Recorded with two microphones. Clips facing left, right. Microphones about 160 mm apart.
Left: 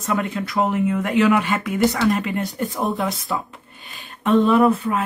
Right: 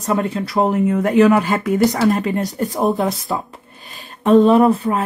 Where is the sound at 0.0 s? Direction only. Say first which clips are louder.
Right 4 dB; 35° right (ahead or behind).